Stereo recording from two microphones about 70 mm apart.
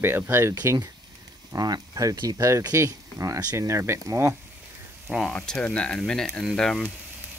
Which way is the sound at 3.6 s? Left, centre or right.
Right.